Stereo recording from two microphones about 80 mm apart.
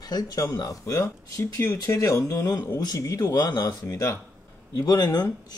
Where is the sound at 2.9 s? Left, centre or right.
Left.